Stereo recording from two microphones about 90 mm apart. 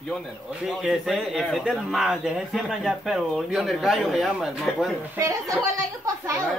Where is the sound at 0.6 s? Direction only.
Centre (ahead or behind).